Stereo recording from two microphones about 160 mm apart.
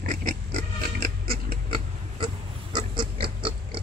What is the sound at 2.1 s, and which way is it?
Pig, 30° right (ahead or behind).